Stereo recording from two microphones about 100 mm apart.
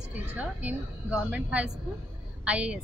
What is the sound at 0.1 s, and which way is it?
A woman's voice, 15° right (ahead or behind).